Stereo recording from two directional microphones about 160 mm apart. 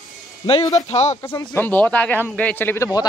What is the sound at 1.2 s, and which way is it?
Speech, 20° left (ahead or behind).